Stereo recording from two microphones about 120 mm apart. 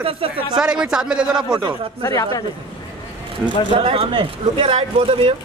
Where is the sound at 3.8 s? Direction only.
55° right (ahead or behind).